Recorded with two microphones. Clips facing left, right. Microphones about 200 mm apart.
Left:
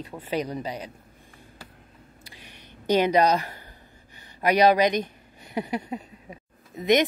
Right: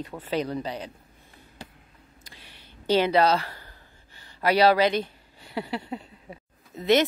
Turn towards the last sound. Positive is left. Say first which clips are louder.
# even
turn(degrees=15)  # may be behind; listen again after turning